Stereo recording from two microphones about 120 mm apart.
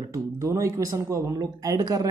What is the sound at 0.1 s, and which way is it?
Speech, 25° right (ahead or behind).